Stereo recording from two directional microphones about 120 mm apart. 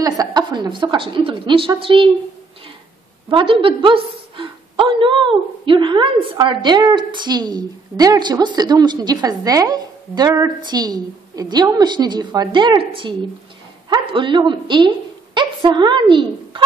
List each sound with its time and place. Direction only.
0.0 s a woman's voice: 35° right (ahead or behind)
3.3 s a woman's voice: 45° right (ahead or behind)